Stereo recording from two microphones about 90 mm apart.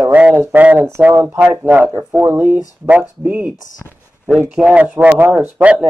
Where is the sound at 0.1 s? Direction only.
15° right (ahead or behind).